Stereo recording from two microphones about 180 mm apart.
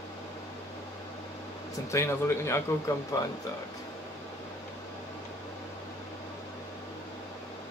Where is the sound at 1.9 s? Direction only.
15° left (ahead or behind).